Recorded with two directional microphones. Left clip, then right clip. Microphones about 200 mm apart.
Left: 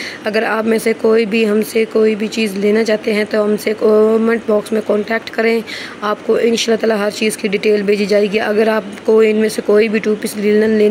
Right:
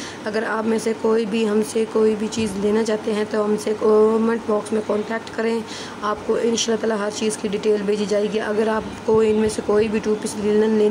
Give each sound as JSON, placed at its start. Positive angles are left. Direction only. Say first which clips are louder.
{"t": 0.2, "sound": "speech", "louder": "left 7 dB", "side_deg": 20}